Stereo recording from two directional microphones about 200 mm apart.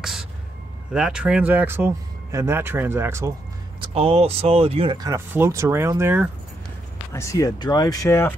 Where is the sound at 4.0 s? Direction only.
30° right (ahead or behind); by 6.3 s 10° right (ahead or behind).